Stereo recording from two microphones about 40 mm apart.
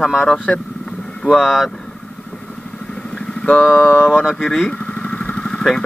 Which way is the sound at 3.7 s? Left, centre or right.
Left.